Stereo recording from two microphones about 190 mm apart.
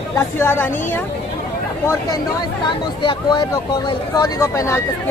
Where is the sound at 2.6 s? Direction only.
25° left (ahead or behind).